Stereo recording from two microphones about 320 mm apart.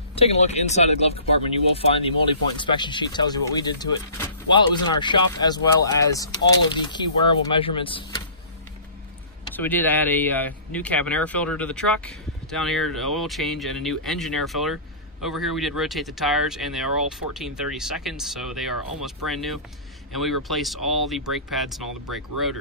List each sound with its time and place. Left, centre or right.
0.1 s a man's voice: centre
9.6 s speech: centre